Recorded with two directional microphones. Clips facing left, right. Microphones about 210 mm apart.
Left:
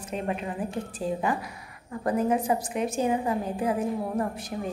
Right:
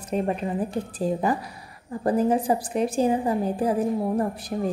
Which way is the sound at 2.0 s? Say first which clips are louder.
Right 3 dB; 30° right (ahead or behind).